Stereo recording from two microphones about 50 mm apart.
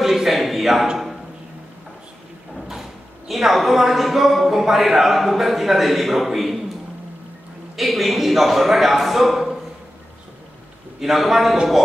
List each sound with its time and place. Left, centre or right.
0.0 s a sound: centre
2.7 s speech: centre
7.7 s speech: centre
11.0 s speech: centre